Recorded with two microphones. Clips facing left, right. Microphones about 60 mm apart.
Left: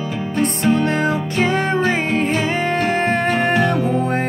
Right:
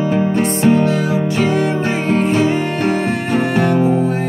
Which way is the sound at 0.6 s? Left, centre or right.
Left.